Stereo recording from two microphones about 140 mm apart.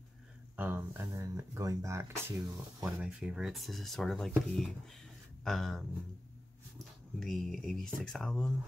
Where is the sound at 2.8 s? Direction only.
5° right (ahead or behind).